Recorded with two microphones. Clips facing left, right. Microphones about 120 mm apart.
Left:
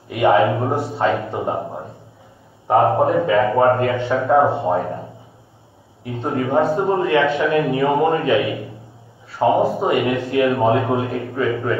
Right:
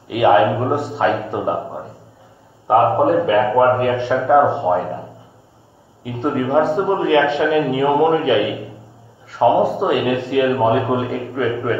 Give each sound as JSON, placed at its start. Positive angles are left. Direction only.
{"t": 0.1, "sound": "a man's voice", "side_deg": -20}
{"t": 2.7, "sound": "a man's voice", "side_deg": -20}
{"t": 6.4, "sound": "a man's voice", "side_deg": -25}